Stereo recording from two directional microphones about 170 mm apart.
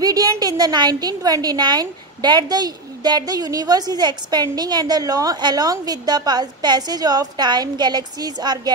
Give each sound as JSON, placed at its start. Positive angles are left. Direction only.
{"t": 0.0, "sound": "a woman's voice", "side_deg": -20}